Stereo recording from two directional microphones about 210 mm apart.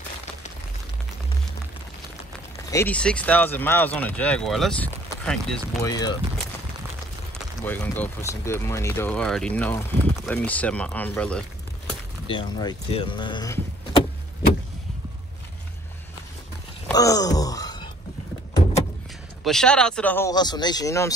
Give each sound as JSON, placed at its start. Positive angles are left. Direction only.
{"t": 2.7, "sound": "speech", "side_deg": 10}
{"t": 5.8, "sound": "speech", "side_deg": 15}
{"t": 7.6, "sound": "speech", "side_deg": 10}
{"t": 12.3, "sound": "speech", "side_deg": 20}
{"t": 16.9, "sound": "groan", "side_deg": 15}
{"t": 19.4, "sound": "speech", "side_deg": 5}